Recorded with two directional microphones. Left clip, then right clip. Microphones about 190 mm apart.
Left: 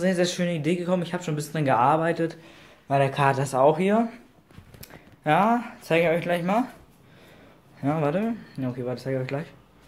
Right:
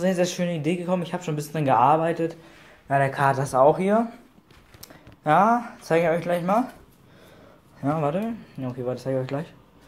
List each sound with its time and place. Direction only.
0.0 s a man's voice: centre (ahead or behind)
4.8 s a sound: centre (ahead or behind)
5.9 s a man's voice: 5° left (ahead or behind)
7.8 s speech: 15° left (ahead or behind)
8.8 s a man's voice: centre (ahead or behind)